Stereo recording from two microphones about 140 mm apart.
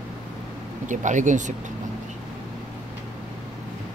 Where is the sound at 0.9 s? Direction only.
65° right (ahead or behind).